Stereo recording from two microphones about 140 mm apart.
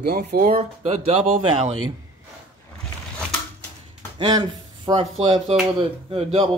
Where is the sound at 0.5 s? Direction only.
45° right (ahead or behind).